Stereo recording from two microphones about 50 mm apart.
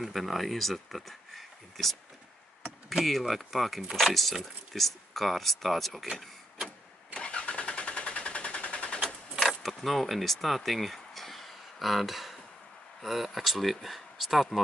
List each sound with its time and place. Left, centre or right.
0.0 s speech: centre
7.2 s vehicle: left
9.4 s a sound: centre
13.0 s speech: centre